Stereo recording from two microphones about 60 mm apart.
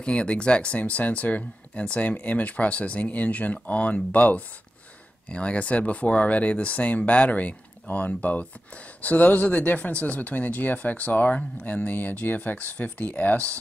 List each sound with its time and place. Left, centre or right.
0.0 s speech: centre